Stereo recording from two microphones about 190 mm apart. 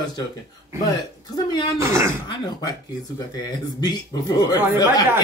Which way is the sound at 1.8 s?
15° right (ahead or behind).